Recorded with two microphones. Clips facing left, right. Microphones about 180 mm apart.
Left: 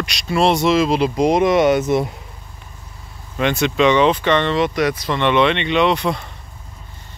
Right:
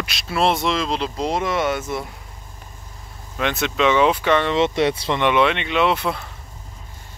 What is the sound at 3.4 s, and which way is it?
Speech, centre (ahead or behind).